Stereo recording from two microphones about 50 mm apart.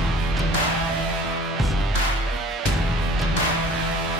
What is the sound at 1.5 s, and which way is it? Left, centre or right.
Music, centre.